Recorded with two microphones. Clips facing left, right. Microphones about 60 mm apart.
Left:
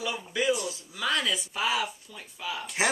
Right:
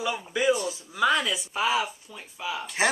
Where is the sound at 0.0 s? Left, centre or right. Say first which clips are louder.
Right 3 dB; centre.